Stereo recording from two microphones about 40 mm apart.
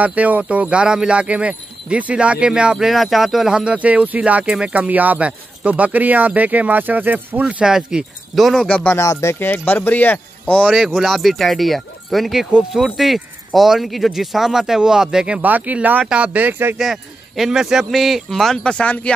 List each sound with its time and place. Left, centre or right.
0.0 s speech: right
2.8 s speech: centre
3.4 s speech: centre
3.7 s speech: right
7.6 s speech: centre
8.3 s speech: centre
8.6 s speech: left
9.5 s speech: left
11.0 s speech: centre
15.4 s speech: right
16.3 s speech: right
16.7 s speech: centre
17.9 s speech: centre
18.6 s speech: left